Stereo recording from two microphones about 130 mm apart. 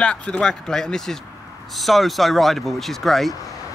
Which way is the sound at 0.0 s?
10° left (ahead or behind).